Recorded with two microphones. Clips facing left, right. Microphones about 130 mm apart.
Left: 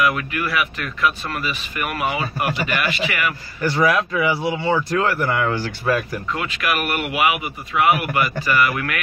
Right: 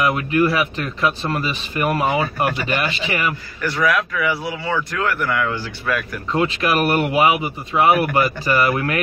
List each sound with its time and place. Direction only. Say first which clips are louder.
0.0 s speech: right 4 dB; 30° right (ahead or behind)
3.6 s speech: left 1 dB; 30° left (ahead or behind)
6.3 s speech: right 6 dB; 30° right (ahead or behind)